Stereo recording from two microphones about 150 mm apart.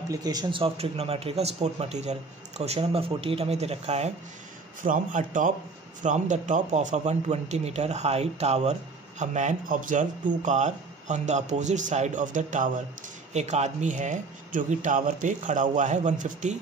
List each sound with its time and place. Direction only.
0.1 s speech: 25° right (ahead or behind); by 4.1 s 45° right (ahead or behind)
4.8 s speech: 60° right (ahead or behind)